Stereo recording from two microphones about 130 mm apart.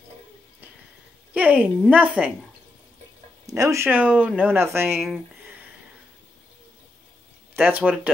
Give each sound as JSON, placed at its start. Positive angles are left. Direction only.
{"t": 1.3, "sound": "speech", "side_deg": -10}
{"t": 3.4, "sound": "speech", "side_deg": -25}
{"t": 7.6, "sound": "speech", "side_deg": -15}